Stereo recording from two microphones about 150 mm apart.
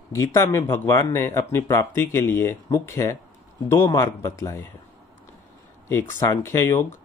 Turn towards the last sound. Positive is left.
turn(degrees=15)  # may be behind; listen again after turning